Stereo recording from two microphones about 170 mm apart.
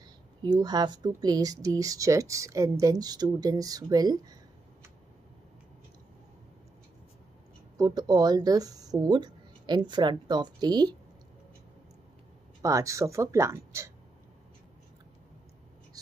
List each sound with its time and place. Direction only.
0.4 s speech: 25° right (ahead or behind)
7.7 s speech: 25° right (ahead or behind)
12.6 s speech: 20° right (ahead or behind)